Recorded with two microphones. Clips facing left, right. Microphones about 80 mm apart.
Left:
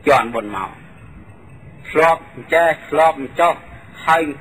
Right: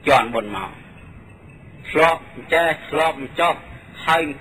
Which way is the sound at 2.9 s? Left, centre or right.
Left.